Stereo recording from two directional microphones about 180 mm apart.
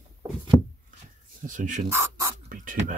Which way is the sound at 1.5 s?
45° right (ahead or behind).